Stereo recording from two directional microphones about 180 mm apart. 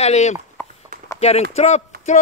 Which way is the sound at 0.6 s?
10° left (ahead or behind).